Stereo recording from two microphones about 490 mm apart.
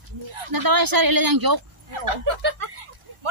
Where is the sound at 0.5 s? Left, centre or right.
Right.